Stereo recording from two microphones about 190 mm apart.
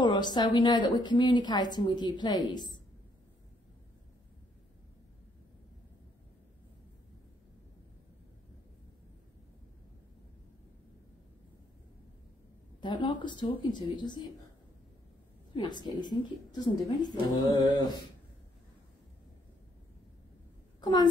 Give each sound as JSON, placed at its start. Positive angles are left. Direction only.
{"t": 0.0, "sound": "a woman's voice", "side_deg": 20}
{"t": 12.8, "sound": "a woman's voice", "side_deg": 25}
{"t": 15.5, "sound": "a woman's voice", "side_deg": 25}
{"t": 20.8, "sound": "a woman's voice", "side_deg": 20}